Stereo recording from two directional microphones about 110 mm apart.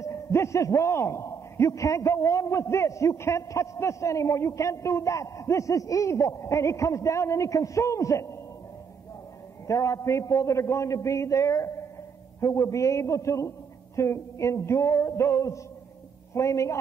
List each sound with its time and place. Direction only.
0.0 s a man's voice: 25° left (ahead or behind)
9.7 s a man's voice: 30° left (ahead or behind)